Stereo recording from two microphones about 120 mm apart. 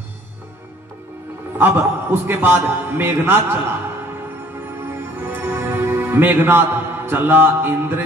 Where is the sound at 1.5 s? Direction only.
20° right (ahead or behind).